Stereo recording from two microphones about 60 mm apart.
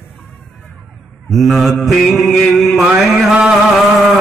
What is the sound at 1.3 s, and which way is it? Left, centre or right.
Mantra, centre.